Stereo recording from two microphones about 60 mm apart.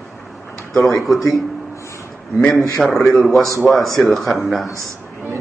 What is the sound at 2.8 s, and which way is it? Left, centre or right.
A man's voice, centre.